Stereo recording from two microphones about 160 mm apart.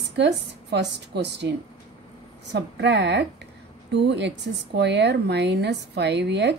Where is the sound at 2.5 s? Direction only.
90° right.